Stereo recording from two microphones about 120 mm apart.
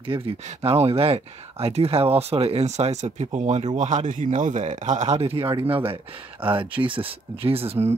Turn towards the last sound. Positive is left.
turn(degrees=-55)  # may be behind; listen again after turning